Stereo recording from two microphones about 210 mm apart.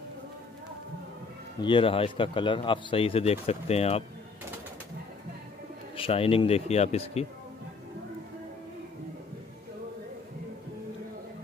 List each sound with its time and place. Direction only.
1.6 s speech: 25° left (ahead or behind)
5.9 s speech: 25° left (ahead or behind)